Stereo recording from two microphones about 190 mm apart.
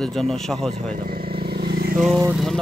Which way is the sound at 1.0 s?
50° right (ahead or behind).